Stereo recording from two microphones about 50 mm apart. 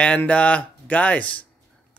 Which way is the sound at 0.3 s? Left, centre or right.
Left.